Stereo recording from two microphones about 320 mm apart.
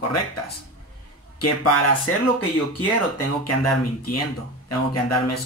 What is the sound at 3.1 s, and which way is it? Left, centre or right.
Speech, left.